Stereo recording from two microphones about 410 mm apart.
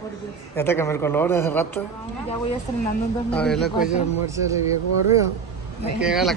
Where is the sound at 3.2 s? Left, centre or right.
Centre.